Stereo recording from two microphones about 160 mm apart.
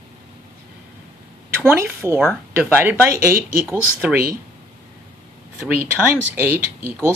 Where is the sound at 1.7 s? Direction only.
15° right (ahead or behind).